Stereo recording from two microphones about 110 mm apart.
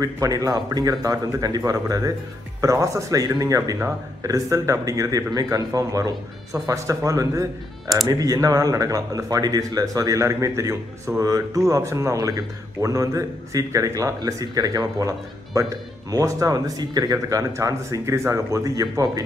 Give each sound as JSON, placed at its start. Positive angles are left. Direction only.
{"t": 0.0, "sound": "speech", "side_deg": -35}